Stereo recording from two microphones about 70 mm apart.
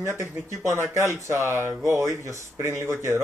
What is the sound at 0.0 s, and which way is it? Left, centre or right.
Speech, right.